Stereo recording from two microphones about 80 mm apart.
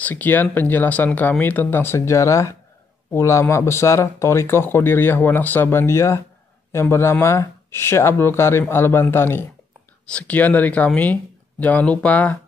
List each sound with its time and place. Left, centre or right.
0.0 s speech: left